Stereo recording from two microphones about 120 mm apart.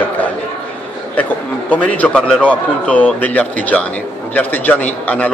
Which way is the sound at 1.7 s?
10° left (ahead or behind).